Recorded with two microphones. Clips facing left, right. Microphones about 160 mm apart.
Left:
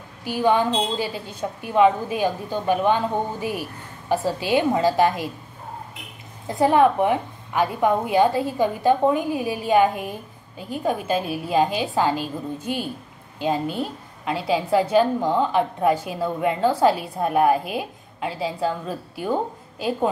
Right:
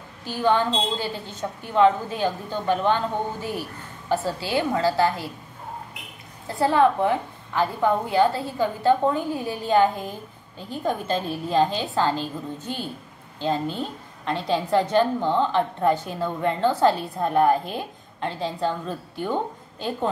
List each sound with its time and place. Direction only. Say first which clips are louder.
0.2 s a woman's voice: left 2 dB; 15° left (ahead or behind)
6.4 s a woman's voice: left 2 dB; 15° left (ahead or behind)